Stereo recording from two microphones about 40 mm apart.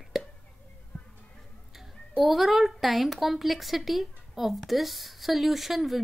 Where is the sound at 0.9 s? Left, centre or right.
Left.